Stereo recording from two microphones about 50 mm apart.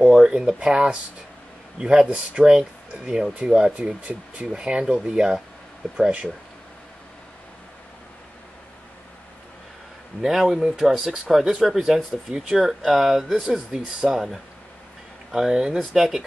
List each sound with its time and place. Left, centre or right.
0.0 s speech: centre
10.2 s speech: centre